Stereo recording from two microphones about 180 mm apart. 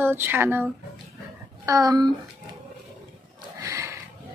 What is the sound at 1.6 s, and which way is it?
Speech, 20° right (ahead or behind).